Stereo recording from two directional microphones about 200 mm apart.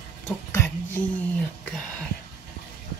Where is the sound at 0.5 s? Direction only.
10° left (ahead or behind).